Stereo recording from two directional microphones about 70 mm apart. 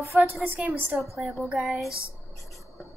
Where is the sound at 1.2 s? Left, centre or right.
Centre.